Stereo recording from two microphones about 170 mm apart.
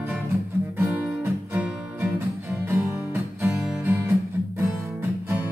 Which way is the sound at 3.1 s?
15° right (ahead or behind).